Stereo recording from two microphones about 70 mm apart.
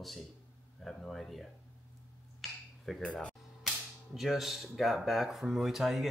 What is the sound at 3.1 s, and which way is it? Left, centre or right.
Speech, centre.